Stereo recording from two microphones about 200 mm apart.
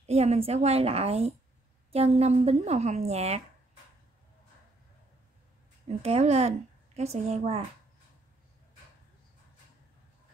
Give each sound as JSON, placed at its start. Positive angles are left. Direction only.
{"t": 0.0, "sound": "a woman's voice", "side_deg": -30}
{"t": 5.9, "sound": "a woman's voice", "side_deg": -30}